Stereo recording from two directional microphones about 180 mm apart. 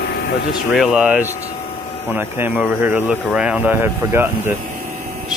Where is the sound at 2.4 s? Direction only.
10° right (ahead or behind).